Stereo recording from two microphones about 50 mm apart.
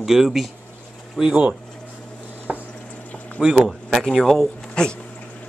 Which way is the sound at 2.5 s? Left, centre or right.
Right.